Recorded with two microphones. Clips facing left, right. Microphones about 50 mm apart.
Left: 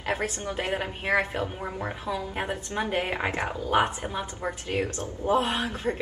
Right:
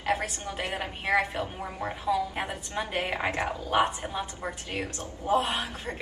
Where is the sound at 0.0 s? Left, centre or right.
Left.